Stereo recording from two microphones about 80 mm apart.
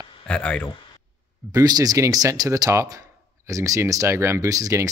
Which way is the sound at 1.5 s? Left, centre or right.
Right.